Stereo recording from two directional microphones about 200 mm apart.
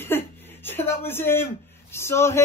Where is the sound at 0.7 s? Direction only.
10° left (ahead or behind).